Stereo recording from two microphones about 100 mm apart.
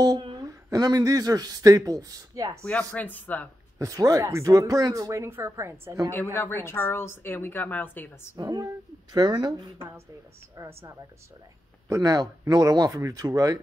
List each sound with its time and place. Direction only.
0.2 s a sound: 50° right (ahead or behind)
0.5 s speech: 35° right (ahead or behind)
2.6 s speech: 15° left (ahead or behind)
3.7 s speech: 35° right (ahead or behind)
6.3 s a woman's voice: 25° left (ahead or behind)
8.4 s speech: 35° right (ahead or behind)
9.8 s a woman's voice: 25° right (ahead or behind)